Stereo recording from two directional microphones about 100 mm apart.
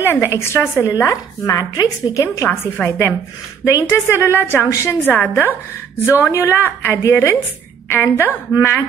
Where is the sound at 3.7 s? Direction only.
30° left (ahead or behind).